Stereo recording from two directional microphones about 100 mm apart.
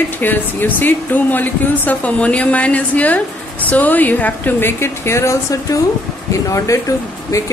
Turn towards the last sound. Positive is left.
turn(degrees=30)  # may be behind; listen again after turning